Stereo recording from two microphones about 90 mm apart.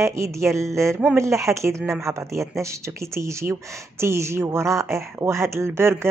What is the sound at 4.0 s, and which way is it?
Speech, 30° right (ahead or behind).